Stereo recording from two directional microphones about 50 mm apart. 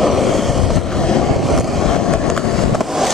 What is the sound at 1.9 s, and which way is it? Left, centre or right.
Vehicle, centre.